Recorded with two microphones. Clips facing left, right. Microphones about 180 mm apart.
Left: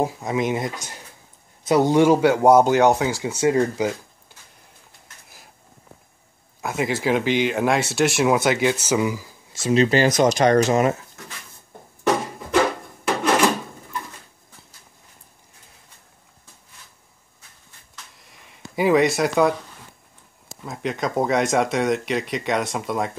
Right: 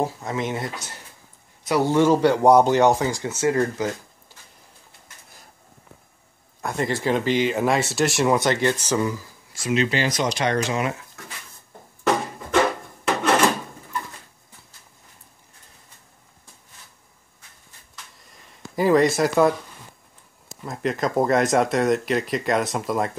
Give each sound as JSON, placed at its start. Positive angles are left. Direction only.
{"t": 0.0, "sound": "speech", "side_deg": 15}
{"t": 1.7, "sound": "speech", "side_deg": 15}
{"t": 6.6, "sound": "speech", "side_deg": 5}
{"t": 9.5, "sound": "speech", "side_deg": 25}
{"t": 9.8, "sound": "speech", "side_deg": 40}
{"t": 18.8, "sound": "speech", "side_deg": 0}
{"t": 20.6, "sound": "speech", "side_deg": 0}